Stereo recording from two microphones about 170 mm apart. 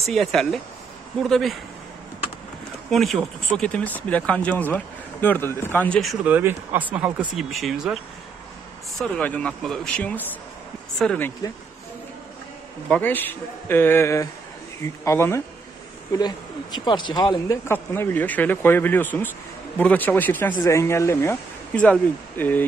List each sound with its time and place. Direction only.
0.0 s speech: centre (ahead or behind)
2.9 s speech: centre (ahead or behind)
6.2 s speech: 10° right (ahead or behind); by 11.3 s 10° left (ahead or behind)
12.8 s speech: 10° left (ahead or behind)